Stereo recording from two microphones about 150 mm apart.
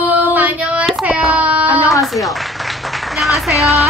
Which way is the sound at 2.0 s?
Centre (ahead or behind).